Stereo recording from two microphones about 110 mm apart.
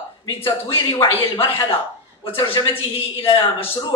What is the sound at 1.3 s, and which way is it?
A woman's voice, 50° left (ahead or behind).